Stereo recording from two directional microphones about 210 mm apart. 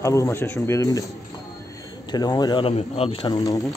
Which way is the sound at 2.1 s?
20° left (ahead or behind).